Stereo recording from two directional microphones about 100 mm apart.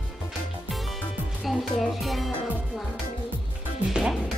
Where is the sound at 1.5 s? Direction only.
Centre (ahead or behind).